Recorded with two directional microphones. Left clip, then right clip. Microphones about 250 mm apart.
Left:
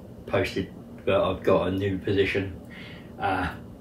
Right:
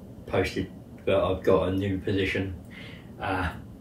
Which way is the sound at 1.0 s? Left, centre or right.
Centre.